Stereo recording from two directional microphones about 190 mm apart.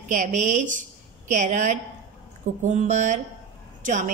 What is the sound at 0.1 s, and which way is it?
A woman's voice, 40° right (ahead or behind).